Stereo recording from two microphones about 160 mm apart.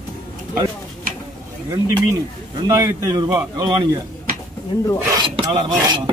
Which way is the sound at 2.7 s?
20° right (ahead or behind).